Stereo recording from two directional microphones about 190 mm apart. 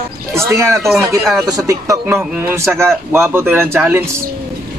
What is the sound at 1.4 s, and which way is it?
A man's voice, 20° right (ahead or behind).